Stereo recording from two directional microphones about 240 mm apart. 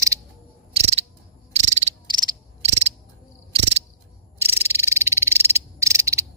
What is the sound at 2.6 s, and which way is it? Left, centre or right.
Cricket, right.